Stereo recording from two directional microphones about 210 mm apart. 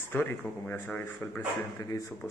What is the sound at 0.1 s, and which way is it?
Speech, 10° left (ahead or behind).